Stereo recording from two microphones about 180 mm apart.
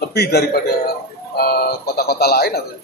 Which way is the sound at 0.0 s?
65° left (ahead or behind).